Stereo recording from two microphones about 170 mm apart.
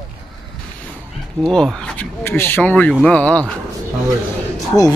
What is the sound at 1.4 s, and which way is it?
Speech, 5° left (ahead or behind).